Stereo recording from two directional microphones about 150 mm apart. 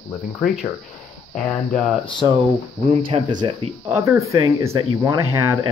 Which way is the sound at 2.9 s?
45° right (ahead or behind).